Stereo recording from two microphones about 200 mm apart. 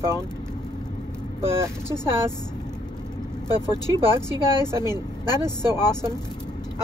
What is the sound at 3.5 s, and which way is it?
Speech, 20° left (ahead or behind).